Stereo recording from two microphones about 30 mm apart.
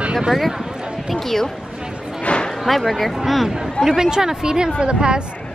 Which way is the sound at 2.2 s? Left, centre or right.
Left.